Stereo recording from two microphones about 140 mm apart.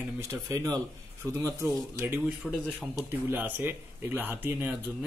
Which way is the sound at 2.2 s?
Centre (ahead or behind).